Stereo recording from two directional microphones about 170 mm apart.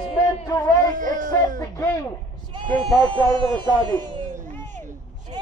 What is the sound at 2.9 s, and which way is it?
Speech, 30° right (ahead or behind).